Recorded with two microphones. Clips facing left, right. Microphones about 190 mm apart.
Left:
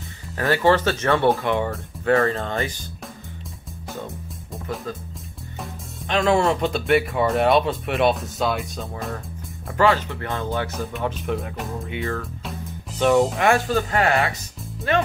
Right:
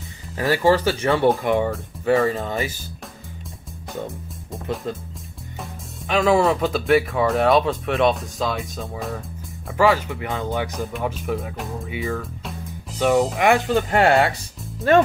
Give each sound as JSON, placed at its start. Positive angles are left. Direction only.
{"t": 0.4, "sound": "speech", "side_deg": -10}
{"t": 1.7, "sound": "speech", "side_deg": 0}
{"t": 5.6, "sound": "speech", "side_deg": -5}
{"t": 10.9, "sound": "speech", "side_deg": -5}
{"t": 13.4, "sound": "speech", "side_deg": -15}
{"t": 14.9, "sound": "speech", "side_deg": -40}